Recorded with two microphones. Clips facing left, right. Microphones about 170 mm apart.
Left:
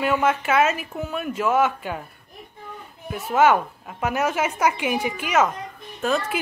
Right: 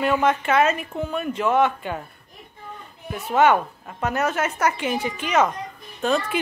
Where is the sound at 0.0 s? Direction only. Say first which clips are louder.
Right 1 dB; 5° left (ahead or behind).